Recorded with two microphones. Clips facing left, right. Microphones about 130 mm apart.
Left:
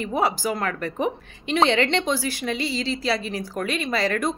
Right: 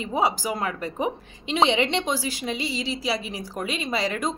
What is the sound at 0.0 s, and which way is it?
A woman's voice, 20° right (ahead or behind).